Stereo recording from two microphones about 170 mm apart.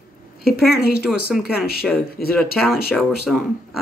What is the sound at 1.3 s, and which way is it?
Speech, centre (ahead or behind).